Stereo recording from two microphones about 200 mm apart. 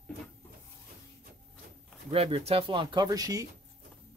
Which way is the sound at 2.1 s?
30° right (ahead or behind).